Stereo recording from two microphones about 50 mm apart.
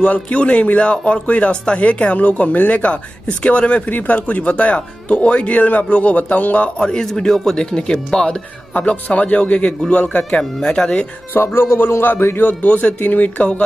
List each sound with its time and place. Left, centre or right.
0.0 s speech: left
6.8 s speech: centre
8.7 s speech: left
11.3 s a man's voice: left
12.4 s speech: left